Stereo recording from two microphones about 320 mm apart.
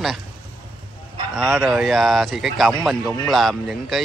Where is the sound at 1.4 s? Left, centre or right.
Centre.